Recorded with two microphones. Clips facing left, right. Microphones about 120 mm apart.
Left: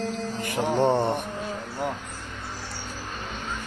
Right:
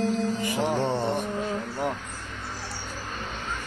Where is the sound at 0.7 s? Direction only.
55° left (ahead or behind).